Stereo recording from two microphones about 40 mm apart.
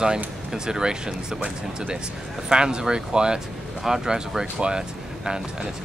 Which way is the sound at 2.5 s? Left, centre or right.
Centre.